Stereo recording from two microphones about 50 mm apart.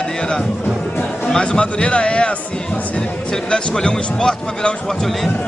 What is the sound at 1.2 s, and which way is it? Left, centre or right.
Speech, centre.